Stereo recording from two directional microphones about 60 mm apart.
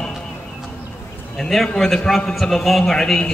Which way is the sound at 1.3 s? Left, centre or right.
Centre.